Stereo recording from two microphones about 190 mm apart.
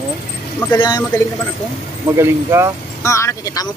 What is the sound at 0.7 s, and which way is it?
Speech, 20° left (ahead or behind).